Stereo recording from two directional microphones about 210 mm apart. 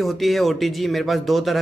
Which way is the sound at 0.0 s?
Centre (ahead or behind).